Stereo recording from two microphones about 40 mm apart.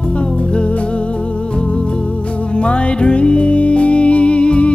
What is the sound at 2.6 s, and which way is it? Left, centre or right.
Music, left.